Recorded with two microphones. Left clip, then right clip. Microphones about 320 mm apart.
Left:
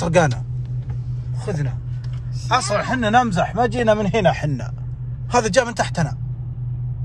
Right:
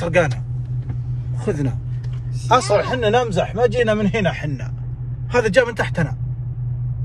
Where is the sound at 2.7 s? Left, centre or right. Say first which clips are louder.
Right 3 dB; centre.